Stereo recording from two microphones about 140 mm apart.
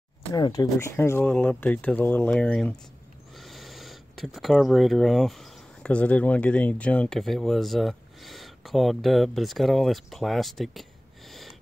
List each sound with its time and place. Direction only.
0.3 s speech: 30° left (ahead or behind)
0.9 s speech: 15° left (ahead or behind)